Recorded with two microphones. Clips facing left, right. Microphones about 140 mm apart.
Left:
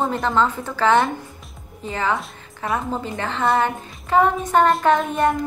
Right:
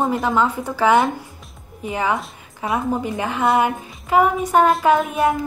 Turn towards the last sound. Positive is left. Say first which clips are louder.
# right 1 dB
turn(degrees=-5)  # may be behind; listen again after turning